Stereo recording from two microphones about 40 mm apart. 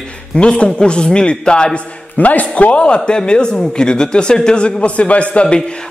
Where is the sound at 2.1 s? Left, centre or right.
Left.